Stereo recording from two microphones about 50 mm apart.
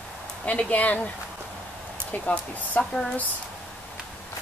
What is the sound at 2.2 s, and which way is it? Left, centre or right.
Speech, left.